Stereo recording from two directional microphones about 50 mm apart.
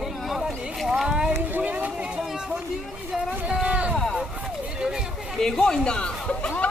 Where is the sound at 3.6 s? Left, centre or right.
Right.